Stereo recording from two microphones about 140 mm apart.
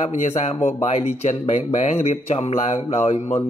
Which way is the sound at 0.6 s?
70° left (ahead or behind).